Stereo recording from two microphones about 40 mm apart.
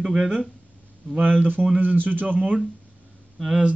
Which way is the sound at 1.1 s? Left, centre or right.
Right.